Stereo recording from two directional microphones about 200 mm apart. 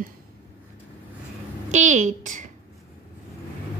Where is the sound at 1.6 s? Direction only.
35° right (ahead or behind).